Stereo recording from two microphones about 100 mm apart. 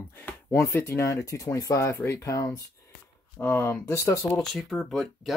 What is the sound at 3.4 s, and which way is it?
Speech, 20° left (ahead or behind).